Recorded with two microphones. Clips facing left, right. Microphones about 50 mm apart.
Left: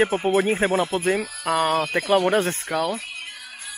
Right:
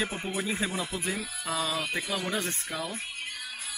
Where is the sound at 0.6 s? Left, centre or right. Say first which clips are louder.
Left 11 dB; left.